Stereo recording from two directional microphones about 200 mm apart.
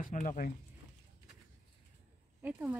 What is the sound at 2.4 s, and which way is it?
Speech, 10° right (ahead or behind).